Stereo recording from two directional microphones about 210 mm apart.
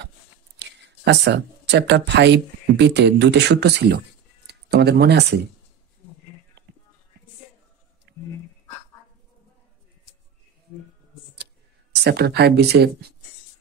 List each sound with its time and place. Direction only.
0.6 s speech: 55° right (ahead or behind)
8.1 s a sound: 50° right (ahead or behind)
11.9 s speech: 50° right (ahead or behind)